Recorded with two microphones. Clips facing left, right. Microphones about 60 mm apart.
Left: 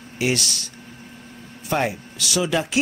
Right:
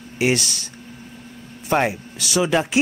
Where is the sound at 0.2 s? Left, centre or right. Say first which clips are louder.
Right 3 dB; right.